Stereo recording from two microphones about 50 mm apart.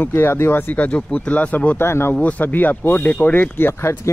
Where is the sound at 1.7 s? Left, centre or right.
Left.